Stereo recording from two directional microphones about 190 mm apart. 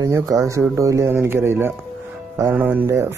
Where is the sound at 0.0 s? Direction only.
20° right (ahead or behind).